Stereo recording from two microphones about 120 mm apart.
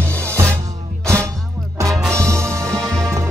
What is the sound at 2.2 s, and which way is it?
Music, 20° right (ahead or behind).